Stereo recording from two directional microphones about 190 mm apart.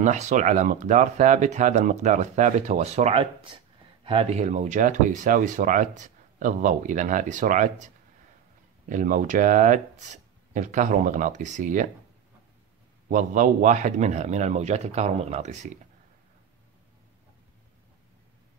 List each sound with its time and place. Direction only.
0.0 s speech: 40° right (ahead or behind)
13.1 s speech: 45° right (ahead or behind)